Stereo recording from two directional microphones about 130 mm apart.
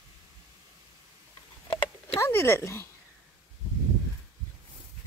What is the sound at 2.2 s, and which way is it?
Speech, 20° left (ahead or behind).